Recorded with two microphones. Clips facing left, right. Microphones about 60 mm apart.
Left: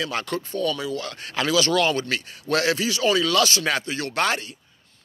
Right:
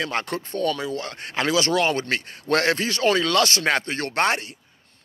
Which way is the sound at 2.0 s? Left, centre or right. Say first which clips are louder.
Right 2 dB; right.